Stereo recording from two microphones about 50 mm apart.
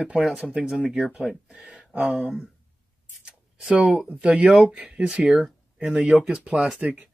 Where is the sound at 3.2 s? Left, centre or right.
Centre.